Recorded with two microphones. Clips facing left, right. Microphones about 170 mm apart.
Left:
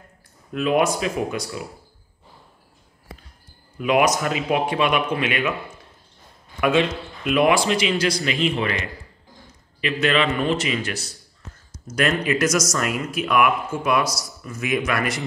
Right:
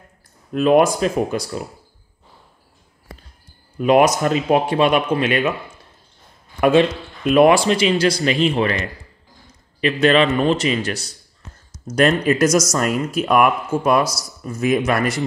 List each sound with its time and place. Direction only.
0.5 s speech: 40° right (ahead or behind)
3.8 s speech: 35° right (ahead or behind)
6.6 s speech: 40° right (ahead or behind)
9.8 s speech: 35° right (ahead or behind)